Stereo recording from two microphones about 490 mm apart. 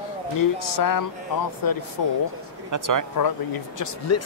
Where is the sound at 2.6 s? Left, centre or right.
Right.